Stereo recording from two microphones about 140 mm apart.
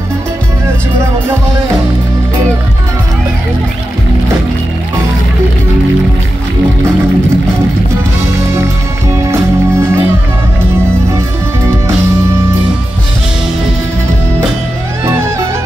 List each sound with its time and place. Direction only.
9.1 s music: 20° right (ahead or behind)
15.0 s music: 20° right (ahead or behind)